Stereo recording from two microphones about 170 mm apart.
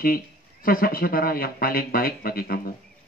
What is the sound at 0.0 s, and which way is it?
A man's voice, 60° left (ahead or behind).